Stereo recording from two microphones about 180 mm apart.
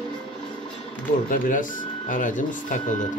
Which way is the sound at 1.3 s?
50° left (ahead or behind).